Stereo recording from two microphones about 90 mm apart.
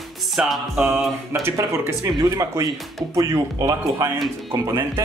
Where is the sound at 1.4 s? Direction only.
30° right (ahead or behind).